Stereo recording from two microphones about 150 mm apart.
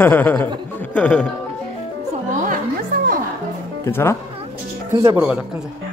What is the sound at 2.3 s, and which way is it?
Music, 60° right (ahead or behind).